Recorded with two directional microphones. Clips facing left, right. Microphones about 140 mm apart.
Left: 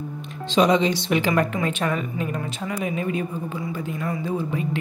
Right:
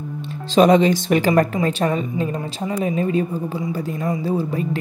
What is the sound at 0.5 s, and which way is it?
A woman's voice, 50° right (ahead or behind).